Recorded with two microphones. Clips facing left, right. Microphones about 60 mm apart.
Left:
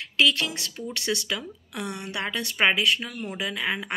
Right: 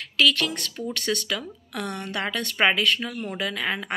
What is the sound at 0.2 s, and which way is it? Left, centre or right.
Speech, left.